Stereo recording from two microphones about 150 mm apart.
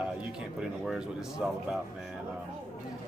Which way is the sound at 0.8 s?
5° right (ahead or behind).